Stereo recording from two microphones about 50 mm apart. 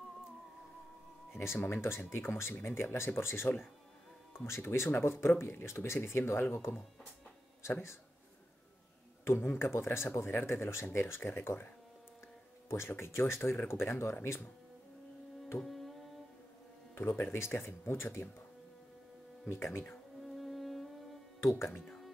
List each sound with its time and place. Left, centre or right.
1.3 s speech: left
9.2 s speech: left
12.6 s speech: left
15.6 s music: centre
16.9 s speech: left
19.5 s speech: left
20.2 s music: centre
21.5 s speech: left